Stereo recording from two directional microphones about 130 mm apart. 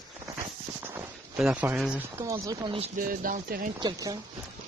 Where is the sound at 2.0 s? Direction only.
20° right (ahead or behind).